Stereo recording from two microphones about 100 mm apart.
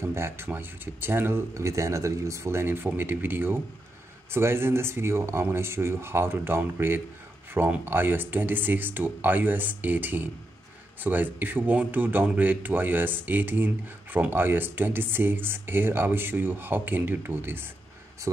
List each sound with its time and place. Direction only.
0.0 s speech: 25° right (ahead or behind)